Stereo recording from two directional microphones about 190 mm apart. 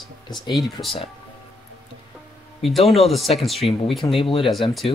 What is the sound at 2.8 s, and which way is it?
Speech, 30° left (ahead or behind).